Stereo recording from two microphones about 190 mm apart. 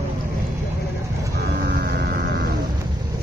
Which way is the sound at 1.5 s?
55° right (ahead or behind).